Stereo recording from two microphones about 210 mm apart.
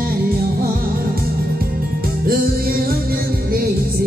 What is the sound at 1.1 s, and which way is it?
Music, 45° right (ahead or behind).